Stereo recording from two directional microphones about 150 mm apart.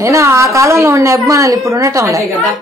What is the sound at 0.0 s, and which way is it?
A woman's voice, 20° right (ahead or behind).